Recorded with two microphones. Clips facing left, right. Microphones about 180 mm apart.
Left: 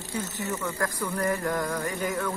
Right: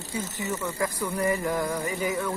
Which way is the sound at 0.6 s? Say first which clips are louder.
Right 2 dB; 10° right (ahead or behind).